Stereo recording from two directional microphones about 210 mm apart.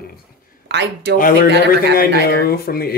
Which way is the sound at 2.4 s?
45° left (ahead or behind).